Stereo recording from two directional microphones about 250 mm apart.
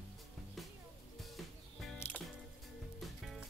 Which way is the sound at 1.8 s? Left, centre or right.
Centre.